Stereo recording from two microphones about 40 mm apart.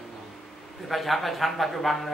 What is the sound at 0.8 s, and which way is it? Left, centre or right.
A man's voice, centre.